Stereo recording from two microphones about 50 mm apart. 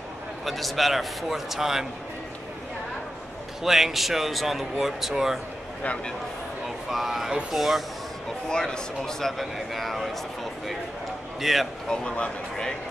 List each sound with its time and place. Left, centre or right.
0.5 s speech: centre
3.6 s speech: centre
6.9 s speech: centre
8.5 s speech: centre
9.2 s speech: centre
11.4 s speech: centre
11.9 s speech: centre